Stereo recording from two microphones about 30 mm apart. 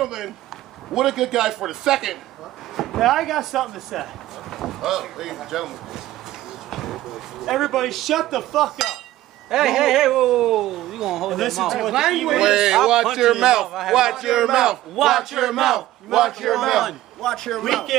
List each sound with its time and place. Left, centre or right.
0.0 s speech: centre
3.0 s speech: centre
6.7 s a sound: centre
7.4 s speech: centre
9.5 s speech: centre
11.3 s speech: centre
11.9 s a man's voice: centre
13.7 s speech: centre
13.9 s a man's voice: centre
17.2 s a man's voice: centre
17.6 s speech: centre